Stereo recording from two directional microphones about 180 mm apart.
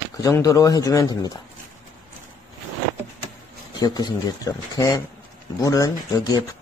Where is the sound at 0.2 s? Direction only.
20° left (ahead or behind).